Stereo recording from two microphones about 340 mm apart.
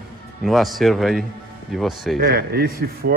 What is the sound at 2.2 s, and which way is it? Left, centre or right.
Speech, right.